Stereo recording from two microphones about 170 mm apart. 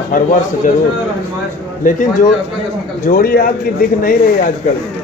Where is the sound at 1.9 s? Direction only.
50° left (ahead or behind).